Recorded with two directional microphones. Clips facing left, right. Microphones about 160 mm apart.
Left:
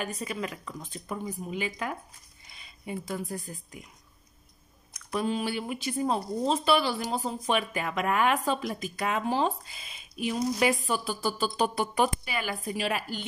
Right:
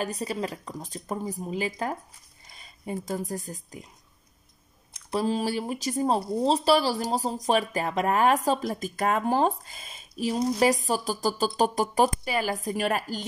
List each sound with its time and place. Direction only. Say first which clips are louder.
0.0 s speech: right 4 dB; 35° right (ahead or behind)
4.9 s speech: right 3 dB; 35° right (ahead or behind)